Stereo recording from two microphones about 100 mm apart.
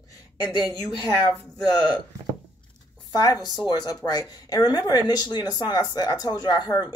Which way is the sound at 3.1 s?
40° left (ahead or behind).